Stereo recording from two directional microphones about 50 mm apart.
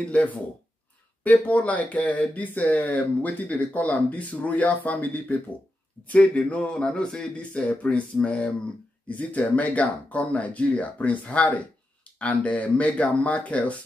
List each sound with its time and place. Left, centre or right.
0.0 s speech: left